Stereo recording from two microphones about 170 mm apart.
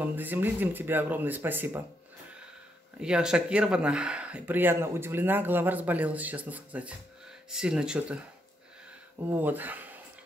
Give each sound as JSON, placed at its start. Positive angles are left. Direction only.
{"t": 0.0, "sound": "speech", "side_deg": -10}
{"t": 3.0, "sound": "speech", "side_deg": -5}
{"t": 9.3, "sound": "speech", "side_deg": -10}